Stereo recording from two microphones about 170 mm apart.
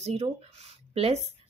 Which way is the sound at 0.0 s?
40° right (ahead or behind).